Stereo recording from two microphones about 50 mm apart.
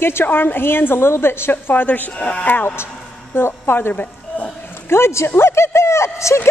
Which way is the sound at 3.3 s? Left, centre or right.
Left.